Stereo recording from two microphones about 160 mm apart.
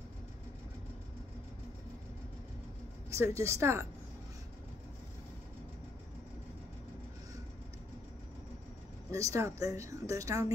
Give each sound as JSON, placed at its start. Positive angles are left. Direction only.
{"t": 3.1, "sound": "speech", "side_deg": -20}
{"t": 9.1, "sound": "speech", "side_deg": -20}